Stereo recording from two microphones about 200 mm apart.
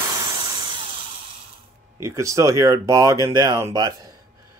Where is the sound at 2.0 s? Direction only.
15° right (ahead or behind).